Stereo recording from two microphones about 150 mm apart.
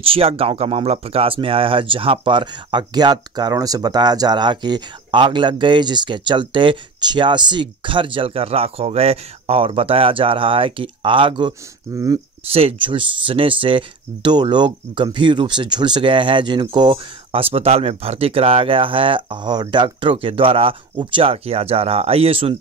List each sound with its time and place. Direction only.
0.0 s speech: 40° right (ahead or behind)